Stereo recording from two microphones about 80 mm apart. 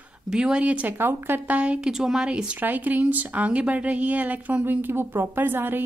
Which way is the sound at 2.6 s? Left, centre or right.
Right.